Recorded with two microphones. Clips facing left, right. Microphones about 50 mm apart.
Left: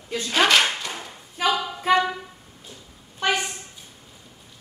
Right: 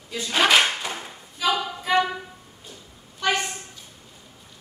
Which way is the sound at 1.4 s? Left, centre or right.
Left.